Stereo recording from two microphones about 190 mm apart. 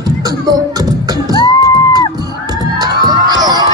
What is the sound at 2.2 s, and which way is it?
Crowd, 20° right (ahead or behind).